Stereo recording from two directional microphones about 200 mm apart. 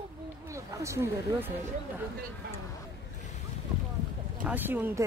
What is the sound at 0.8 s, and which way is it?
Speech, 15° right (ahead or behind).